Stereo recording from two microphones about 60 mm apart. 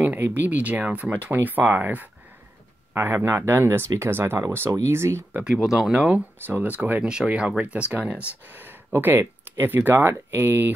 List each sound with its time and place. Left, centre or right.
0.0 s speech: right
5.4 s speech: centre
5.9 s speech: right
7.0 s speech: centre
8.5 s speech: right